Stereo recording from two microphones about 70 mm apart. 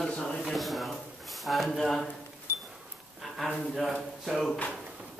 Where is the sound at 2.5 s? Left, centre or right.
Left.